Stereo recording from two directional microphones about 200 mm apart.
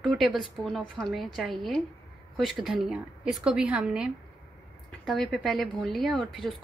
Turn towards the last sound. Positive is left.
turn(degrees=0)  # may be behind; listen again after turning